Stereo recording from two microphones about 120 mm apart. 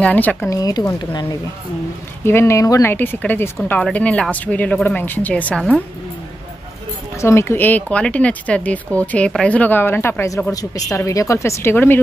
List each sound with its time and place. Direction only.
0.0 s speech: 10° left (ahead or behind)
0.5 s speech: 30° left (ahead or behind)
2.2 s speech: 20° left (ahead or behind)
7.2 s speech: 25° left (ahead or behind)